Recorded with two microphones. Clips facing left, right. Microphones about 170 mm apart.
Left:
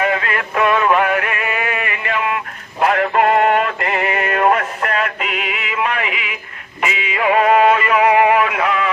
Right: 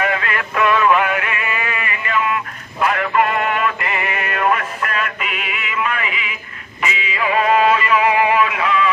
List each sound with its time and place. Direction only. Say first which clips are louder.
0.0 s male singing: left 2 dB; 30° left (ahead or behind); by 2.3 s 55° left (ahead or behind)
2.8 s music: left 3 dB; 50° left (ahead or behind)
5.8 s a sound: left 2 dB; 55° left (ahead or behind)
6.8 s music: left 3 dB; 55° left (ahead or behind)